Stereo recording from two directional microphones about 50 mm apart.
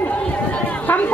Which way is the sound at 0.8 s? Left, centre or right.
Left.